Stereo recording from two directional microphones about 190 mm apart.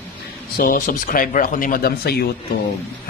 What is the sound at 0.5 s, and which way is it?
A man's voice, 45° left (ahead or behind).